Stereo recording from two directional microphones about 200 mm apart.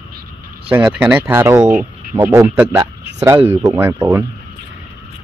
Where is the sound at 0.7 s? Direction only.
10° right (ahead or behind).